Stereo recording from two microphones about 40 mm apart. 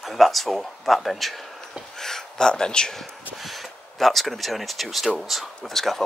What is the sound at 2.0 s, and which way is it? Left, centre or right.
Speech, centre.